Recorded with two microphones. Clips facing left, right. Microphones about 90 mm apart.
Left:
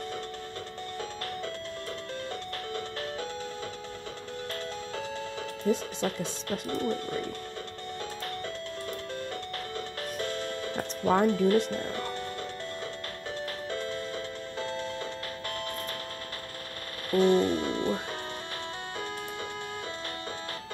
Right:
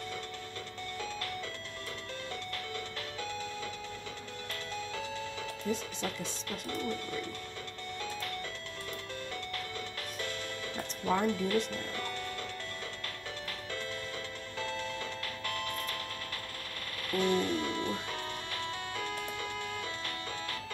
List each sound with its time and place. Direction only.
5.7 s speech: 40° left (ahead or behind)
10.1 s music: 40° left (ahead or behind)
14.6 s music: 30° left (ahead or behind)
17.1 s speech: 35° left (ahead or behind)